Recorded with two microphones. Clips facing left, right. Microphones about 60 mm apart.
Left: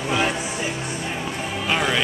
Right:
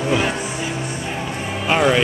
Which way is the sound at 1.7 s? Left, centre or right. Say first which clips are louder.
Right 6 dB; centre.